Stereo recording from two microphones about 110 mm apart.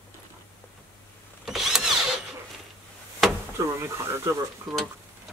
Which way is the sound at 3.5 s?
25° right (ahead or behind).